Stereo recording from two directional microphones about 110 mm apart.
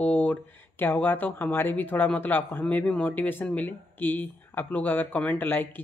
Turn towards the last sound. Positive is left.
turn(degrees=15)  # may be behind; listen again after turning